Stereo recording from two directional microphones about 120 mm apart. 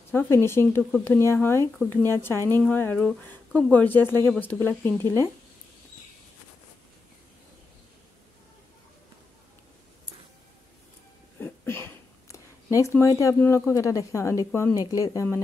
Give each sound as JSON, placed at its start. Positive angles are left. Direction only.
{"t": 0.1, "sound": "speech", "side_deg": 20}
{"t": 3.0, "sound": "speech", "side_deg": 5}
{"t": 3.7, "sound": "speech", "side_deg": 15}
{"t": 11.3, "sound": "a sound", "side_deg": 20}
{"t": 13.4, "sound": "speech", "side_deg": 20}